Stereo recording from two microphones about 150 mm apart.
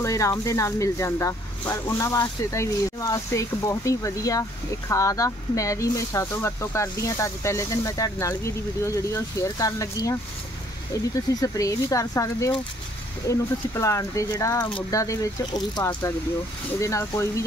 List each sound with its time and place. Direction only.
0.0 s speech: 20° left (ahead or behind)